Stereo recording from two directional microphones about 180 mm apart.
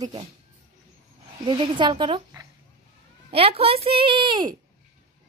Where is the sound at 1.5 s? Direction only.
25° right (ahead or behind).